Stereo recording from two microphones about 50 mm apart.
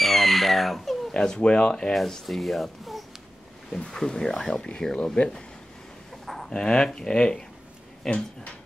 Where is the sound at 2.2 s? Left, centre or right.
Centre.